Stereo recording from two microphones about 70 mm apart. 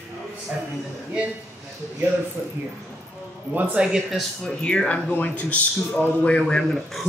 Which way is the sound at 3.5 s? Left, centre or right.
Right.